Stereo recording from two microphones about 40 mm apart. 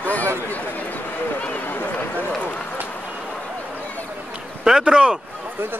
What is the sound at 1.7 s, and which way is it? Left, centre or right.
Run, left.